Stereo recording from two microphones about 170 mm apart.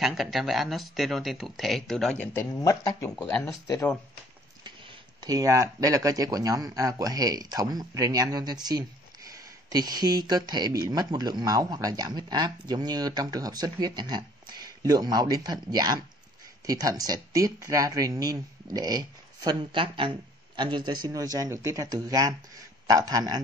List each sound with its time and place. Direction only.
0.0 s speech: centre (ahead or behind)
2.3 s speech: 20° left (ahead or behind)
5.2 s speech: 20° right (ahead or behind)